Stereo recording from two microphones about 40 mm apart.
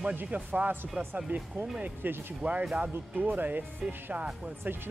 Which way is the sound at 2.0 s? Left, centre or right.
Right.